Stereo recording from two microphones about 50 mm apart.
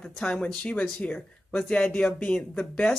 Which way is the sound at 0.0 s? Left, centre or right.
Centre.